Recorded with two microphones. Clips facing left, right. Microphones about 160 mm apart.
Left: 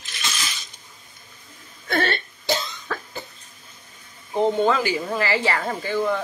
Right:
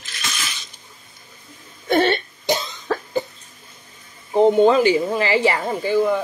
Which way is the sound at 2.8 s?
30° right (ahead or behind).